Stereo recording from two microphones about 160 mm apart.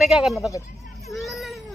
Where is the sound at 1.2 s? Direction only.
Centre (ahead or behind).